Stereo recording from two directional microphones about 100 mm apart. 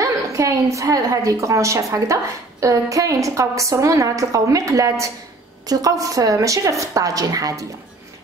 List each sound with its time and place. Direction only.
0.0 s a woman's voice: 35° right (ahead or behind)